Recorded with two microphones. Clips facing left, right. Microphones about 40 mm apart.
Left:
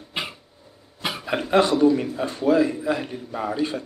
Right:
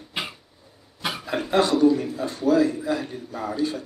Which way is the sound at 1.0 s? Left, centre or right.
Centre.